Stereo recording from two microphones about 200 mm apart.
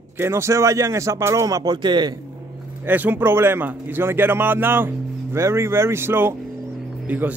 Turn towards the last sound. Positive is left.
turn(degrees=-10)  # may be behind; listen again after turning